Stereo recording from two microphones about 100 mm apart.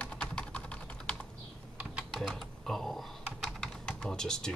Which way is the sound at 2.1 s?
5° left (ahead or behind).